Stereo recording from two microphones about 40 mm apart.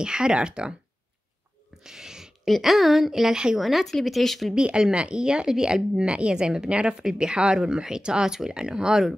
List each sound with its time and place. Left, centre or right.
0.0 s speech: right
1.8 s a sound: centre
2.4 s a woman's voice: centre
3.5 s a woman's voice: centre
4.7 s speech: right